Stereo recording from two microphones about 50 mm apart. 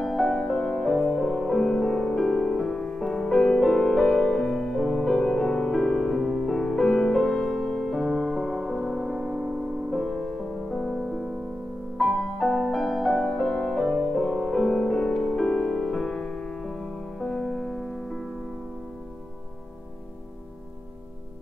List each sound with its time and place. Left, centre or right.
0.0 s music: centre
2.3 s music: centre
9.8 s music: centre